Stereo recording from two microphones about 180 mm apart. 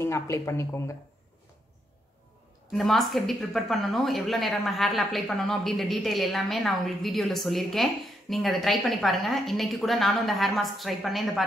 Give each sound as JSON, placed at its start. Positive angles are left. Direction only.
{"t": 0.0, "sound": "speech", "side_deg": 15}
{"t": 2.7, "sound": "speech", "side_deg": 0}